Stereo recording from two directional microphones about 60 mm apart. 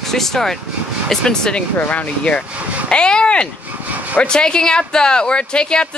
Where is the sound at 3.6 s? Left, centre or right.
Right.